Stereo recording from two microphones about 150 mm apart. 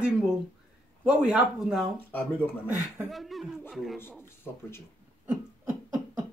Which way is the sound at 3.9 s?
15° left (ahead or behind).